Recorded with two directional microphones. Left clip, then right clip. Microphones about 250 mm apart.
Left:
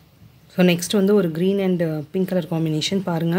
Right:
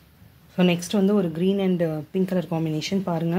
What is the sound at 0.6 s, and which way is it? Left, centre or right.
Speech, left.